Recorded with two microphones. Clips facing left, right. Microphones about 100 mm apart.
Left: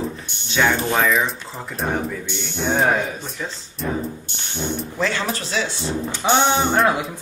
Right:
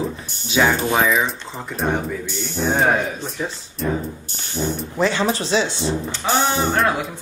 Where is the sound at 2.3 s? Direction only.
40° right (ahead or behind).